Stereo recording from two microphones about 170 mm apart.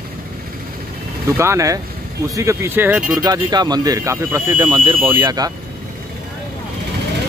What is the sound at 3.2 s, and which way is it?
Speech, 25° right (ahead or behind).